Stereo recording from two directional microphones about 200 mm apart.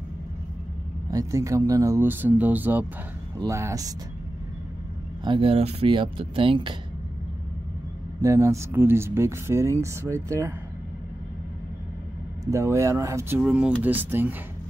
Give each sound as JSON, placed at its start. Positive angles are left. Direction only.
{"t": 1.1, "sound": "speech", "side_deg": -15}
{"t": 5.2, "sound": "speech", "side_deg": -25}
{"t": 8.2, "sound": "speech", "side_deg": -15}
{"t": 12.4, "sound": "speech", "side_deg": -15}